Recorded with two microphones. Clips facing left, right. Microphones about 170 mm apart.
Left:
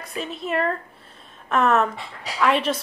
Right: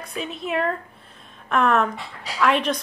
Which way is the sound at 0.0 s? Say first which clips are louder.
Even; centre (ahead or behind).